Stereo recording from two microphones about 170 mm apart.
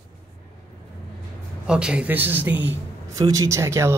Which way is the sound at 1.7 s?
5° right (ahead or behind).